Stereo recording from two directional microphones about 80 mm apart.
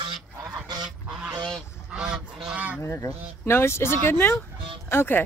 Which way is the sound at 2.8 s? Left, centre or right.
Left.